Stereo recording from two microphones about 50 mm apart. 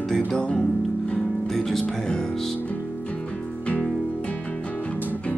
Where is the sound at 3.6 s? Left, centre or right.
Left.